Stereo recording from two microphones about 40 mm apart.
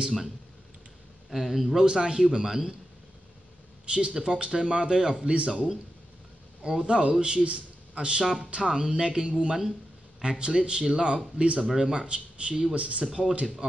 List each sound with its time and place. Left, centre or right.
1.3 s a man's voice: centre
1.8 s a man's voice: centre
3.9 s speech: right
6.8 s speech: right